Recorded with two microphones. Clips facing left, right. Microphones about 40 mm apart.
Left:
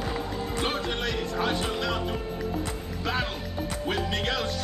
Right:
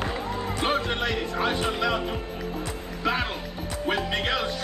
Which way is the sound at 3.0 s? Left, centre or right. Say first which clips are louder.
Right 3 dB; centre.